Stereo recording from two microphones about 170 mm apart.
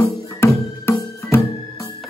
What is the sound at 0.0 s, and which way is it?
Music, 15° left (ahead or behind).